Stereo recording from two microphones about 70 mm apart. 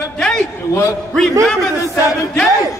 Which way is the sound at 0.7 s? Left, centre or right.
Left.